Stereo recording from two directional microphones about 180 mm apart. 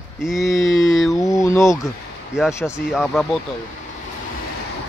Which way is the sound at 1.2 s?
15° left (ahead or behind).